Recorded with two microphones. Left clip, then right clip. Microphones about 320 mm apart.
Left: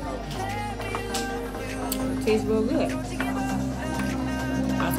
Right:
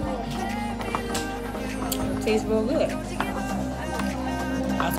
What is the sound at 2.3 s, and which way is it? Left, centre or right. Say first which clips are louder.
Speech: even; centre.